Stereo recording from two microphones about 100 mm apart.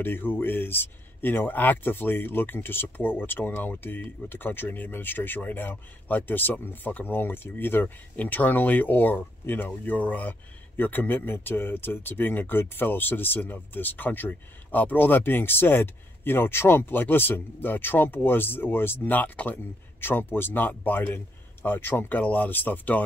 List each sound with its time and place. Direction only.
0.0 s speech: 20° left (ahead or behind)